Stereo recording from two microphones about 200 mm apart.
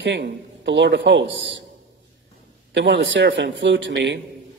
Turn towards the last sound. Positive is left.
turn(degrees=-60)  # may be behind; listen again after turning